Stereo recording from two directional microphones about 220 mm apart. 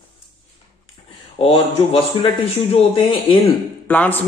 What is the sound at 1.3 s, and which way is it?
A man's voice, 25° left (ahead or behind).